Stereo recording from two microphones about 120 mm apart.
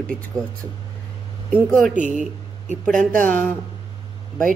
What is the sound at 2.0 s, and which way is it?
Speech, 90° right.